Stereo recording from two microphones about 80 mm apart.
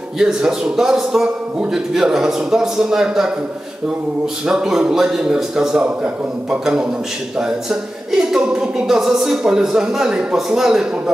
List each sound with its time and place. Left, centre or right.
0.2 s speech: centre
4.5 s speech: centre
8.1 s speech: centre